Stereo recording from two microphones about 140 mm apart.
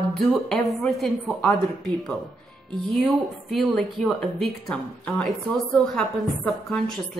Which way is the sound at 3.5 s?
Centre (ahead or behind).